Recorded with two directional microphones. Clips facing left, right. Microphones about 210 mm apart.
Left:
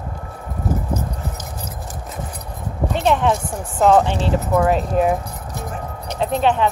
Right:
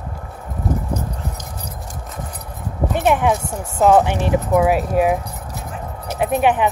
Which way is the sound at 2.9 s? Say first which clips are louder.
Right 1 dB; 10° right (ahead or behind).